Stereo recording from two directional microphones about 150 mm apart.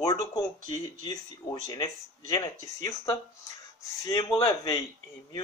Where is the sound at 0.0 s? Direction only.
25° left (ahead or behind).